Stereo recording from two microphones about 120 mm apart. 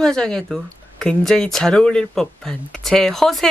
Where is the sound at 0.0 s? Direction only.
5° left (ahead or behind).